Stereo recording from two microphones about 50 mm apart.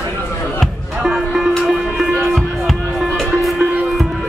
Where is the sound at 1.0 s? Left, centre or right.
Centre.